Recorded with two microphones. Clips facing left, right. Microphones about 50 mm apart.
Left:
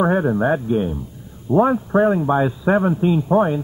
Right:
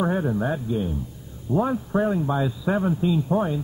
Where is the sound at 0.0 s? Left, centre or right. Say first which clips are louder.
Left 6 dB; left.